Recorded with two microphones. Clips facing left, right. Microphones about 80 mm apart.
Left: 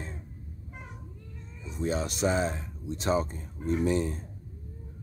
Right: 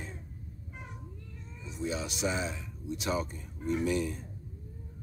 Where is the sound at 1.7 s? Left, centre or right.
Left.